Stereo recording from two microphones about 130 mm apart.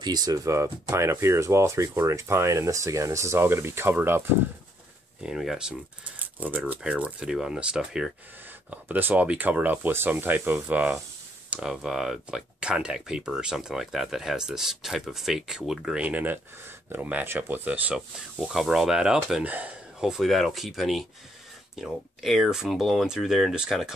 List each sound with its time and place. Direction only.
0.0 s speech: 30° right (ahead or behind); by 4.2 s 15° right (ahead or behind)
5.2 s speech: 5° right (ahead or behind)